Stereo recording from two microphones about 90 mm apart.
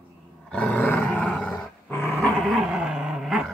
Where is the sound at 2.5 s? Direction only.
5° right (ahead or behind).